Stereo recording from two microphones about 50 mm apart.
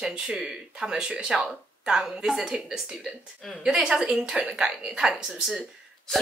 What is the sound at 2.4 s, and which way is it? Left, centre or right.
Speech, centre.